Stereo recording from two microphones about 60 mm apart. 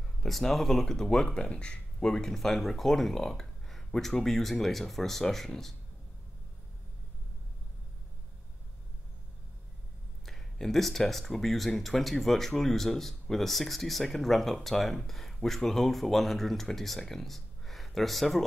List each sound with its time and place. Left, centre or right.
0.2 s speech: centre
10.2 s speech: centre